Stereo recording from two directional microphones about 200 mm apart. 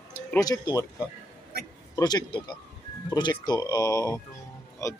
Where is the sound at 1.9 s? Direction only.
20° left (ahead or behind).